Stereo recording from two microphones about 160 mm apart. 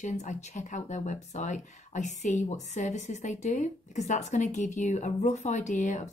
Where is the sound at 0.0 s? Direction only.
50° left (ahead or behind).